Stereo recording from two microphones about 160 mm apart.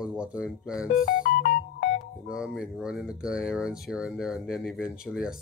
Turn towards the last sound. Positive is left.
turn(degrees=-5)  # may be behind; listen again after turning